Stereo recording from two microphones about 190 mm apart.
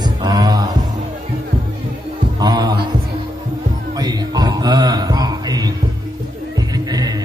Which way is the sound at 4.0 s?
20° right (ahead or behind).